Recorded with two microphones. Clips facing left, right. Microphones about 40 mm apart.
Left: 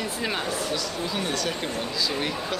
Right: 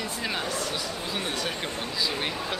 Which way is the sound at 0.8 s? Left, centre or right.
Centre.